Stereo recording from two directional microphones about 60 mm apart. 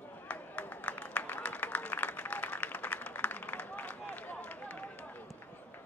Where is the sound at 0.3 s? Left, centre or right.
Left.